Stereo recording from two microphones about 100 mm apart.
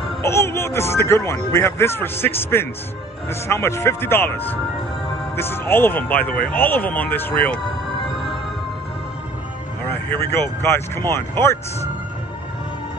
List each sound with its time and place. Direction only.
0.2 s speech: 25° left (ahead or behind)
7.6 s music: 55° left (ahead or behind)
9.8 s speech: 20° left (ahead or behind)